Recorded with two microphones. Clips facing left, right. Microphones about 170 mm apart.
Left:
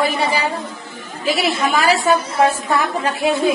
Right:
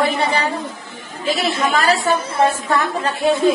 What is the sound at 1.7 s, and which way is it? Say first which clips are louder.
Speech: left 1 dB; centre (ahead or behind).